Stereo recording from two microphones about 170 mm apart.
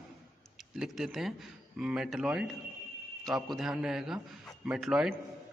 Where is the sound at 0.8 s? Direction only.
Centre (ahead or behind).